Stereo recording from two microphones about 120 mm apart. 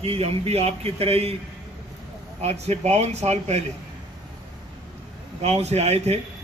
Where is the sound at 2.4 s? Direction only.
65° right (ahead or behind).